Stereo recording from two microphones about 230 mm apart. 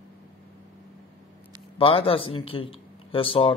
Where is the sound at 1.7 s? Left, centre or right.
Left.